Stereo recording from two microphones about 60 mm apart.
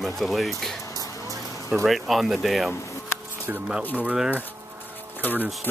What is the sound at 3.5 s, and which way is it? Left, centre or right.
Speech, right.